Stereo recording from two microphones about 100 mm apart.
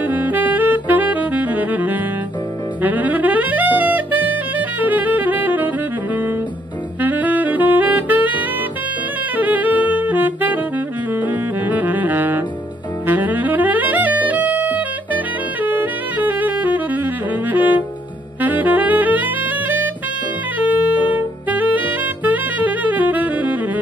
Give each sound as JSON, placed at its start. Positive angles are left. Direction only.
{"t": 0.0, "sound": "saxophone", "side_deg": -15}
{"t": 2.8, "sound": "music", "side_deg": -15}
{"t": 7.0, "sound": "saxophone", "side_deg": -15}
{"t": 9.4, "sound": "saxophone", "side_deg": -15}
{"t": 13.0, "sound": "music", "side_deg": -20}
{"t": 18.4, "sound": "saxophone", "side_deg": -15}
{"t": 20.5, "sound": "music", "side_deg": -15}
{"t": 21.5, "sound": "saxophone", "side_deg": -15}